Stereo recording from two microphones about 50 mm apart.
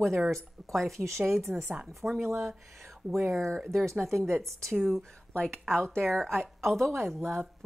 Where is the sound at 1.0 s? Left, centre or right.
Right.